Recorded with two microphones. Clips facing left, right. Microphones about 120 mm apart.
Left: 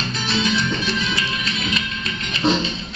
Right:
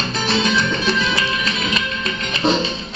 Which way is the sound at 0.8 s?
90° right.